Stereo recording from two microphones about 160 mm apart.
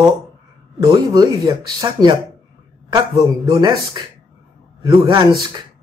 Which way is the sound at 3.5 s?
25° right (ahead or behind).